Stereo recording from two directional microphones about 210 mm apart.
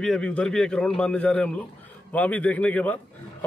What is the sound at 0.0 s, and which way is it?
A man's voice, 5° left (ahead or behind).